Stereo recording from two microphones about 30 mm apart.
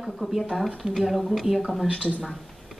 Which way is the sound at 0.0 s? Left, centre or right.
Centre.